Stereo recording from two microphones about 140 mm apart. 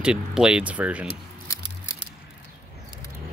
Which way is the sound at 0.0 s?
5° right (ahead or behind).